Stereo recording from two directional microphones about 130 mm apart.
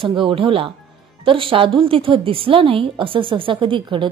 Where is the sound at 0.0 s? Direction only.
40° right (ahead or behind).